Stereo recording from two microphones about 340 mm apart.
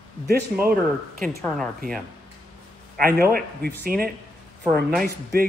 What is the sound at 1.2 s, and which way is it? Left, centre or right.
Speech, centre.